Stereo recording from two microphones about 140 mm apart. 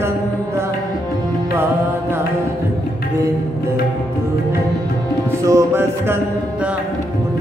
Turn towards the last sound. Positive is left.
turn(degrees=-20)  # may be behind; listen again after turning